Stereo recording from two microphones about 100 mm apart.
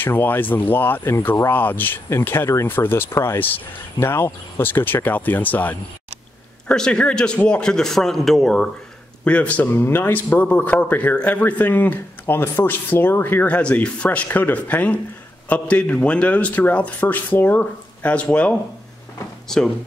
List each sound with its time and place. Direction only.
0.0 s a man's voice: 20° left (ahead or behind); by 8.6 s 5° left (ahead or behind)
9.2 s a man's voice: 15° left (ahead or behind)